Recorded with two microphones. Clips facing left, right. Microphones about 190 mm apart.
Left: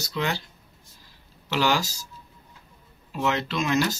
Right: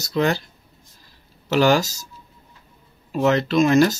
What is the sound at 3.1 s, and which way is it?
Speech, 45° right (ahead or behind).